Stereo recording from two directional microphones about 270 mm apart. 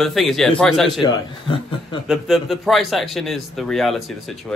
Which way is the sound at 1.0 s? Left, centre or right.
Centre.